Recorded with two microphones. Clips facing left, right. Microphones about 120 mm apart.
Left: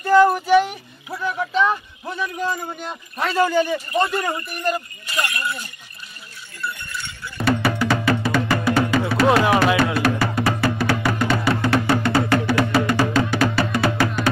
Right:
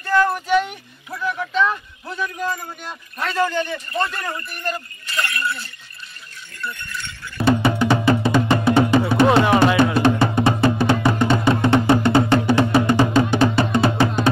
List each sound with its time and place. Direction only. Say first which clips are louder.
0.0 s speech: left 4 dB; 15° left (ahead or behind)
6.6 s a sound: left 1 dB; 10° left (ahead or behind)
7.4 s music: right 3 dB; 20° right (ahead or behind)